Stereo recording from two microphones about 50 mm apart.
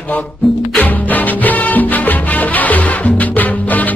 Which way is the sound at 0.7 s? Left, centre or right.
Left.